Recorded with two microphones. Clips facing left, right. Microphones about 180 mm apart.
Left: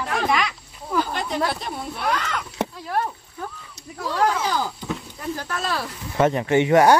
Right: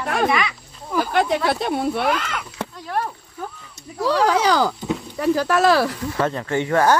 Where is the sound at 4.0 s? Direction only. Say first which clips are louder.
Right 5 dB; 80° right.